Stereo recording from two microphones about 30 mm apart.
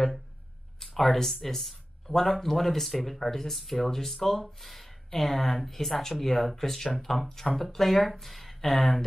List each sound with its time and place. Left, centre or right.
0.8 s speech: centre
7.2 s speech: left
7.5 s speech: centre